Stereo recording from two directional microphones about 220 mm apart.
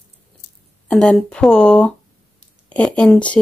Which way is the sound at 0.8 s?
5° left (ahead or behind).